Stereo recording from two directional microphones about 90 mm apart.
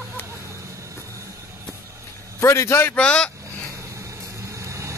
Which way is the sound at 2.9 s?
10° left (ahead or behind).